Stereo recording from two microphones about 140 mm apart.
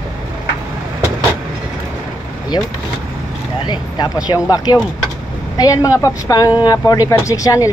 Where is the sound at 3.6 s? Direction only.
30° left (ahead or behind).